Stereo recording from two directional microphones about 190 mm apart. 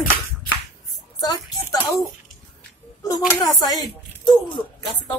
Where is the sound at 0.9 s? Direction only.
20° left (ahead or behind).